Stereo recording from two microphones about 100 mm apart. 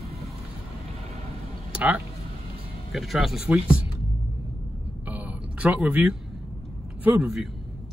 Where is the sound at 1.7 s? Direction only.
15° right (ahead or behind).